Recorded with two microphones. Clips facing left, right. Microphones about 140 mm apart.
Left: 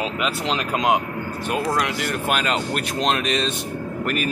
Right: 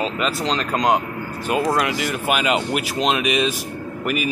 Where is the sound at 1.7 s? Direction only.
5° right (ahead or behind).